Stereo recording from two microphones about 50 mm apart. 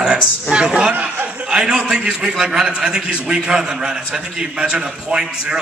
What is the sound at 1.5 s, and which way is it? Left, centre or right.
A man's voice, centre.